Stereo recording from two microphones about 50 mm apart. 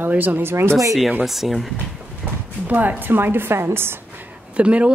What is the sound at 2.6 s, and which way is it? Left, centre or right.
A woman's voice, right.